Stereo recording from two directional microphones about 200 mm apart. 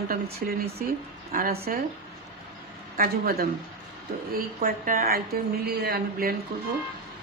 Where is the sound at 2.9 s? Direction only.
50° right (ahead or behind).